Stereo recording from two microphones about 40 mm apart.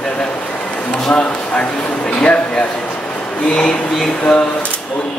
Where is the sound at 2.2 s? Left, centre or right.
Left.